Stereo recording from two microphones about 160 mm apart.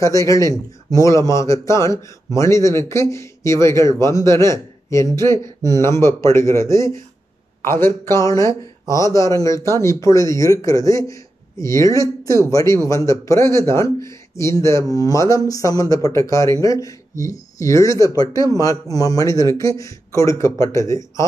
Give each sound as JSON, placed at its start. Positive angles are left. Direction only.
{"t": 0.0, "sound": "speech", "side_deg": 20}